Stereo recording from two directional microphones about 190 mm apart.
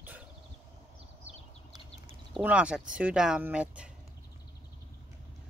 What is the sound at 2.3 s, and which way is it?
Speech, 5° right (ahead or behind).